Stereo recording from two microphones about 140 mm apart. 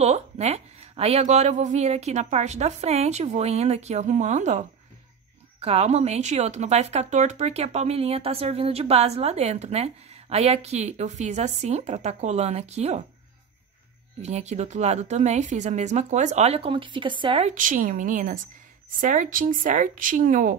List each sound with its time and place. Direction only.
0.0 s speech: 50° right (ahead or behind)
5.6 s speech: 45° right (ahead or behind)
14.2 s speech: 50° right (ahead or behind)
17.6 s speech: 70° right (ahead or behind)